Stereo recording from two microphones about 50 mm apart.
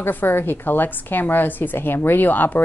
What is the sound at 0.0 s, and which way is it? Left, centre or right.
A woman's voice, left.